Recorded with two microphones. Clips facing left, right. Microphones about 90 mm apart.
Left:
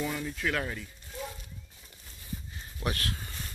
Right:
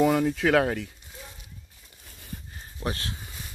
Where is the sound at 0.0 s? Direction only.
85° right.